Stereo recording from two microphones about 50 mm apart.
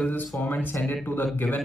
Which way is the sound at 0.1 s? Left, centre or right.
Left.